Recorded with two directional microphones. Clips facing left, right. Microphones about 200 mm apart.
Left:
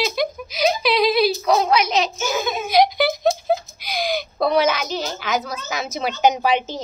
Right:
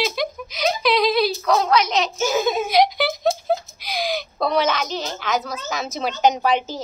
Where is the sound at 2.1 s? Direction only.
30° right (ahead or behind).